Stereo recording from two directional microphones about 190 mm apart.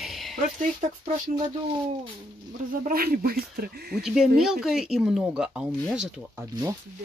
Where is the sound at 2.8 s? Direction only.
50° right (ahead or behind).